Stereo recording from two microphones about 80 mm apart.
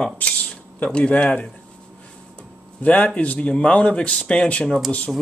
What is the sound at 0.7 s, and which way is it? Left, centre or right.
Speech, centre.